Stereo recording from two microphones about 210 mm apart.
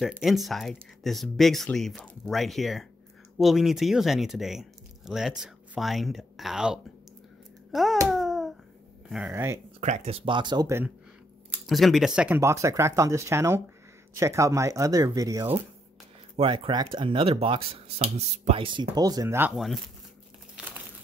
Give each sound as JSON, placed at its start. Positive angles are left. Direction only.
{"t": 0.0, "sound": "speech", "side_deg": 0}
{"t": 8.1, "sound": "a sound", "side_deg": 0}
{"t": 9.1, "sound": "speech", "side_deg": -10}
{"t": 9.8, "sound": "speech", "side_deg": -35}
{"t": 11.6, "sound": "speech", "side_deg": 0}
{"t": 19.5, "sound": "speech", "side_deg": 0}
{"t": 20.5, "sound": "crumpling", "side_deg": -5}